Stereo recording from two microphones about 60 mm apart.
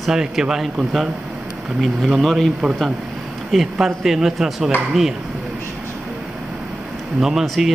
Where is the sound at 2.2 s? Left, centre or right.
Centre.